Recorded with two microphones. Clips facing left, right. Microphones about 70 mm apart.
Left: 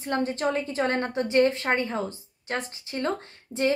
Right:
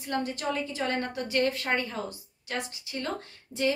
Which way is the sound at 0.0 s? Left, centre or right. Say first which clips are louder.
Left 5 dB; left.